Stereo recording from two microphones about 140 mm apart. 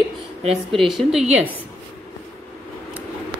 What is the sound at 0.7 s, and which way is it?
Speech, centre (ahead or behind).